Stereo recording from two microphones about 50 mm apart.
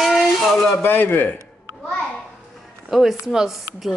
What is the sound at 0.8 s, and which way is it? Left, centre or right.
Speech, left.